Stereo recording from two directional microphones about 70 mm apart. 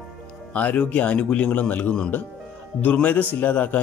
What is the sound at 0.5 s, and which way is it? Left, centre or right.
Speech, centre.